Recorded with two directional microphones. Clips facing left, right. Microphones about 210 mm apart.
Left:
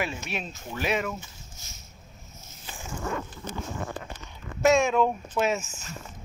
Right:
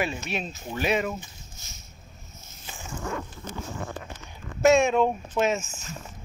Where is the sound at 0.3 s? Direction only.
5° left (ahead or behind).